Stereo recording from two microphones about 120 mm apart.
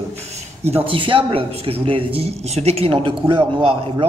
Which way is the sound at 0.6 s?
50° right (ahead or behind).